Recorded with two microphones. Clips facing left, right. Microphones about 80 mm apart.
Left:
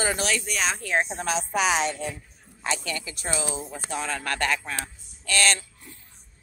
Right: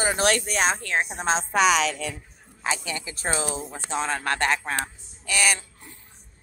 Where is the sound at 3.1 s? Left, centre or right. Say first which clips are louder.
Right 4 dB; right; by 5.6 s centre.